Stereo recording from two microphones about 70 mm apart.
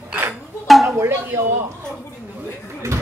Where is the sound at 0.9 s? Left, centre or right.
Right.